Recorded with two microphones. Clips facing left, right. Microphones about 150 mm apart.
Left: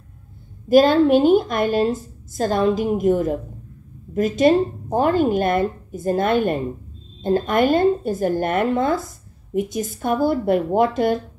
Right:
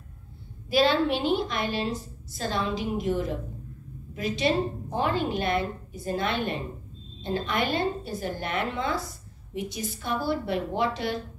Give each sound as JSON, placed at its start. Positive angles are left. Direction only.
{"t": 0.7, "sound": "a woman's voice", "side_deg": 45}